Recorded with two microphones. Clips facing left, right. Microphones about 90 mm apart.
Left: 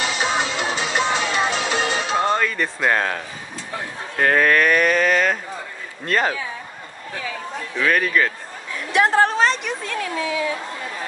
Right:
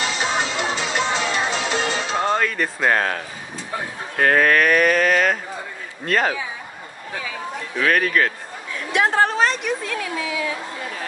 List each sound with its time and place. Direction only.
0.0 s music: 15° left (ahead or behind)
2.1 s a sound: centre (ahead or behind)
4.2 s a man's voice: centre (ahead or behind)
7.8 s a man's voice: centre (ahead or behind)